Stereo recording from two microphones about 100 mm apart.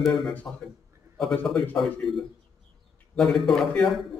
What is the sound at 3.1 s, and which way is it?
Speech, 5° left (ahead or behind).